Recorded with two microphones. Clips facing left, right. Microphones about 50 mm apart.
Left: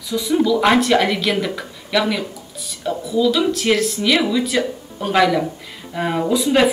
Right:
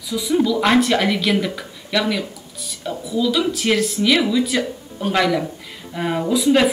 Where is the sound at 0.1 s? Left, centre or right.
Centre.